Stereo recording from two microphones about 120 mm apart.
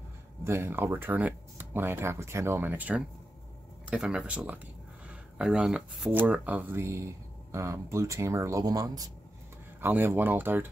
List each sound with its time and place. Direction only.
0.4 s speech: 20° right (ahead or behind); by 6.1 s centre (ahead or behind)
6.1 s speech: 15° right (ahead or behind); by 9.1 s 30° right (ahead or behind)
9.8 s speech: 20° right (ahead or behind)